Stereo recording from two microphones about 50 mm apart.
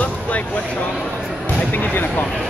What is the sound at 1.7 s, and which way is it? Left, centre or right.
Speech, left.